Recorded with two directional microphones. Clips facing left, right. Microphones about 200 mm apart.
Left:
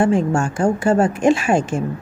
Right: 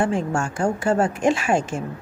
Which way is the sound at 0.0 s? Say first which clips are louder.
Left 5 dB; 25° left (ahead or behind).